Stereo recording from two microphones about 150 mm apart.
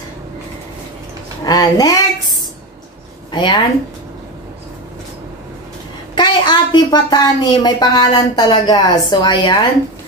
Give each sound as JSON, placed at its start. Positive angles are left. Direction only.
{"t": 1.4, "sound": "speech", "side_deg": 25}
{"t": 3.3, "sound": "speech", "side_deg": 30}
{"t": 6.1, "sound": "speech", "side_deg": 30}